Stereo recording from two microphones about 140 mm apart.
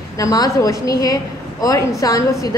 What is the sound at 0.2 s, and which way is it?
A woman's voice, 25° left (ahead or behind).